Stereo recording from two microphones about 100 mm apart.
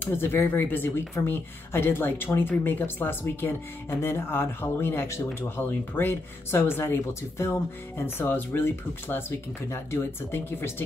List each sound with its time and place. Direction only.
0.0 s speech: 20° left (ahead or behind)